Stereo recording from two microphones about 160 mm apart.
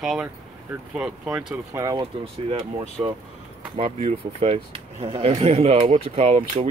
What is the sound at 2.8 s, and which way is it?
Speech, 35° right (ahead or behind).